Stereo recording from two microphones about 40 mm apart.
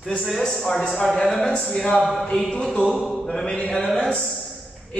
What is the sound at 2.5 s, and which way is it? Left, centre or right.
Speech, left.